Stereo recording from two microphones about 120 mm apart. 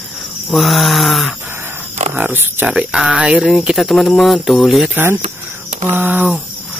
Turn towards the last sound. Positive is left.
turn(degrees=-15)  # may be behind; listen again after turning